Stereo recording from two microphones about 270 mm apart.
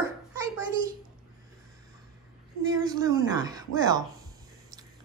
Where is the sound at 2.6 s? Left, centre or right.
Centre.